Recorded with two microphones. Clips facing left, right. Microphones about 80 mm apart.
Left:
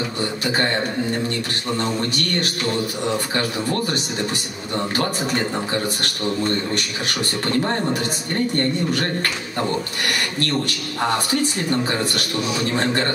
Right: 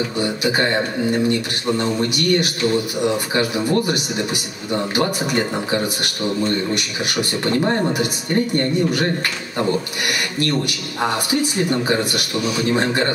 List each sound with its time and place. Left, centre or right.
0.2 s a man's voice: centre
1.8 s speech: centre
11.0 s speech: centre